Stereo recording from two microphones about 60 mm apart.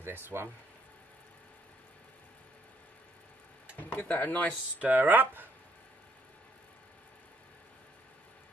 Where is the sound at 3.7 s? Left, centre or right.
Left.